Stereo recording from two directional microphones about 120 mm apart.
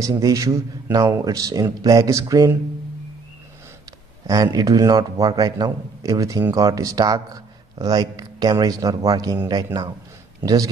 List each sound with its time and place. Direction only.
0.0 s speech: 30° right (ahead or behind)
4.3 s a man's voice: 30° right (ahead or behind)
10.4 s a man's voice: 30° right (ahead or behind)